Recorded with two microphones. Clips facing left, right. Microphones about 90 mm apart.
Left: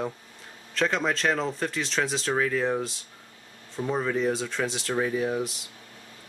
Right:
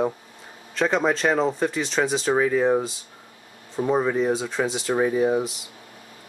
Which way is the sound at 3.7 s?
25° right (ahead or behind).